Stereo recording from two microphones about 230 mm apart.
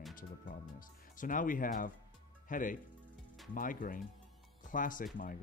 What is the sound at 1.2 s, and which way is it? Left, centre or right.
Speech, left.